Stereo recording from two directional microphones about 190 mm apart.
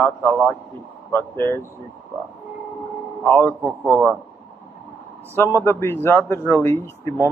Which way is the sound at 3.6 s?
15° right (ahead or behind).